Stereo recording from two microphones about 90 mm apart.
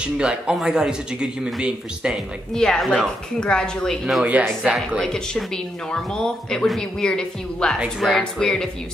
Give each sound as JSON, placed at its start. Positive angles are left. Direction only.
{"t": 0.0, "sound": "a man's voice", "side_deg": -10}
{"t": 2.5, "sound": "speech", "side_deg": 5}
{"t": 4.2, "sound": "a man's voice", "side_deg": -15}
{"t": 4.7, "sound": "speech", "side_deg": 5}